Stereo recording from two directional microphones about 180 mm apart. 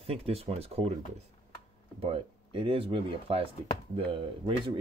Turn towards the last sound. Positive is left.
turn(degrees=-30)  # may be behind; listen again after turning